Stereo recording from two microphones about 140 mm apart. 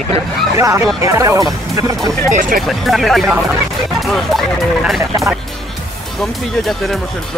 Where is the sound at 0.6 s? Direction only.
20° right (ahead or behind).